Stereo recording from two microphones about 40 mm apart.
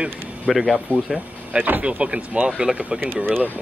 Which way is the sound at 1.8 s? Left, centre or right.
Right.